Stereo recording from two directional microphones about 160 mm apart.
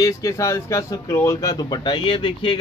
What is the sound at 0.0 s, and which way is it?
Speech, 20° left (ahead or behind).